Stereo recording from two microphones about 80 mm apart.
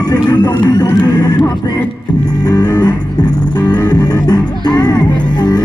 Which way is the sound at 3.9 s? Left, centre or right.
Left.